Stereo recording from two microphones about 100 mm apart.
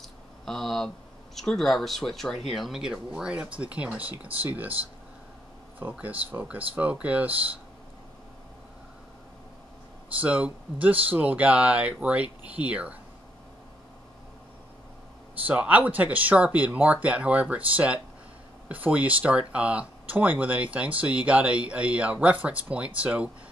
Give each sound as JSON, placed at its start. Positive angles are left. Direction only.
{"t": 0.0, "sound": "speech", "side_deg": 5}
{"t": 5.8, "sound": "speech", "side_deg": -15}
{"t": 10.2, "sound": "speech", "side_deg": -15}
{"t": 15.4, "sound": "speech", "side_deg": -15}